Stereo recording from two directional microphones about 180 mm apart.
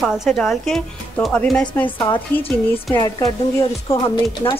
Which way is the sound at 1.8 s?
25° left (ahead or behind).